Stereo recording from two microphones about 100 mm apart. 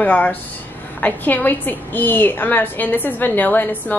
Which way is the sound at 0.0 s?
15° left (ahead or behind).